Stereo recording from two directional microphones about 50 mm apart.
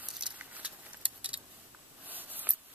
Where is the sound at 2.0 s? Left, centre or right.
Right.